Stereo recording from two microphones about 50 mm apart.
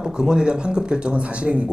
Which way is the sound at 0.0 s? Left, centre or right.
Centre.